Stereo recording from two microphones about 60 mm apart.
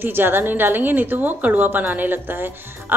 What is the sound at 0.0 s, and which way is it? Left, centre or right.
A woman's voice, right.